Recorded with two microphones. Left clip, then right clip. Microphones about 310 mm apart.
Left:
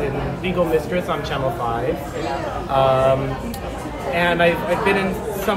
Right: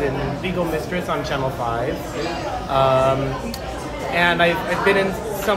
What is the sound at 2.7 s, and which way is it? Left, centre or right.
A man's voice, centre.